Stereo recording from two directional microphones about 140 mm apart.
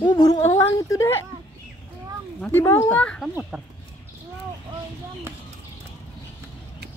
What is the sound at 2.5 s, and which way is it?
Speech, 15° left (ahead or behind).